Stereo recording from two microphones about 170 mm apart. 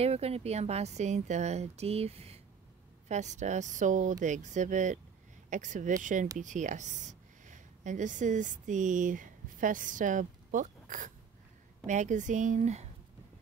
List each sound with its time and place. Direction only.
0.0 s speech: 35° right (ahead or behind)